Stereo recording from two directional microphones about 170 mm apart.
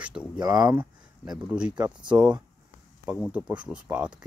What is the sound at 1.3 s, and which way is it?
Speech, 5° right (ahead or behind).